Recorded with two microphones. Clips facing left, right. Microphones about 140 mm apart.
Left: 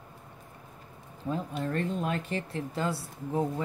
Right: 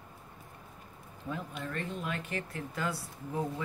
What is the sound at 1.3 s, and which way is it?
Speech, 35° left (ahead or behind).